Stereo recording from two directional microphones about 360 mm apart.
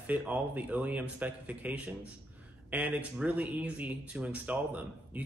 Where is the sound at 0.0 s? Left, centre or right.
Centre.